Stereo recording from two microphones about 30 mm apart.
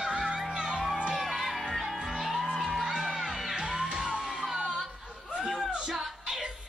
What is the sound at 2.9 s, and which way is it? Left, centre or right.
Music, centre.